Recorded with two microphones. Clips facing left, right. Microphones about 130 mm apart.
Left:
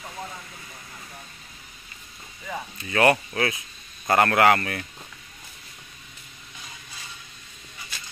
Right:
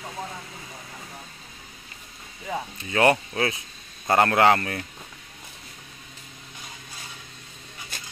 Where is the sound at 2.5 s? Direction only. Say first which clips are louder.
Right 2 dB; 20° right (ahead or behind).